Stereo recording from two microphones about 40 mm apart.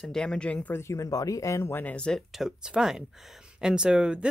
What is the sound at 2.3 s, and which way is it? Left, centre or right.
Speech, centre.